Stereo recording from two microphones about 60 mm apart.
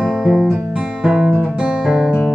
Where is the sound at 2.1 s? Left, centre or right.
Left.